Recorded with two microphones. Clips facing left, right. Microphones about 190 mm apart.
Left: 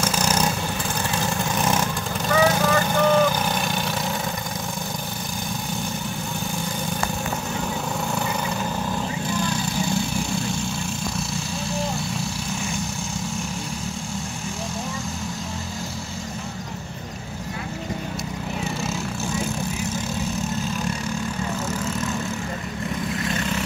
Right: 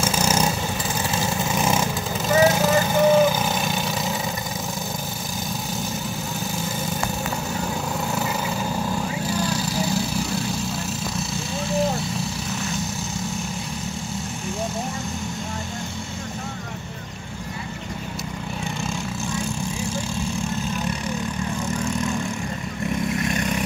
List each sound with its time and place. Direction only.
0.0 s vehicle: 10° right (ahead or behind)
9.8 s vehicle: 5° right (ahead or behind)
23.1 s vehicle: 20° right (ahead or behind)